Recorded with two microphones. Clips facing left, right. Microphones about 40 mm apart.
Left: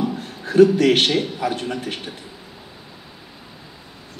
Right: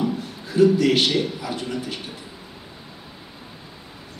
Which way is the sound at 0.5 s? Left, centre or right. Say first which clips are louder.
Left 3 dB; left.